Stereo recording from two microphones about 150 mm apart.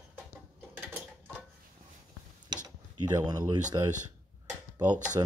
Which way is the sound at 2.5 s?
30° right (ahead or behind).